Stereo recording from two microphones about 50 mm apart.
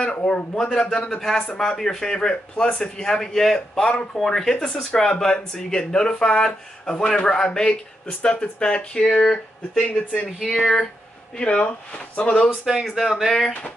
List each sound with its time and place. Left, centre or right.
0.0 s a man's voice: left
0.6 s speech: centre
10.4 s speech: centre
11.3 s a man's voice: left
12.6 s speech: centre